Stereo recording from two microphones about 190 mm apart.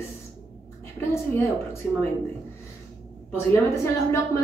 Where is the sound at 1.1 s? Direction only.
15° left (ahead or behind).